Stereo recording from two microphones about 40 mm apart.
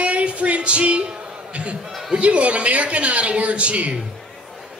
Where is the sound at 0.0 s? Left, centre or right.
Right.